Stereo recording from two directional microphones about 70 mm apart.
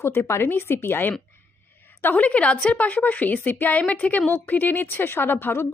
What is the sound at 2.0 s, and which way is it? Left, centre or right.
A woman's voice, left.